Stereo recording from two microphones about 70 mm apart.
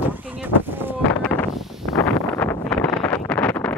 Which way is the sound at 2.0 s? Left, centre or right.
Left.